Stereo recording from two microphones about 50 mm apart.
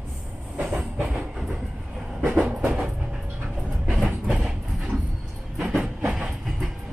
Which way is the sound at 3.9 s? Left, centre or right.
Right.